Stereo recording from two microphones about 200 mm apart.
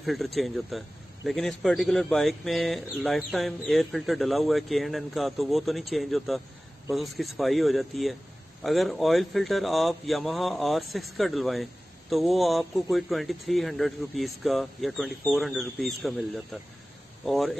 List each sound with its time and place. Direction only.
0.0 s speech: centre (ahead or behind)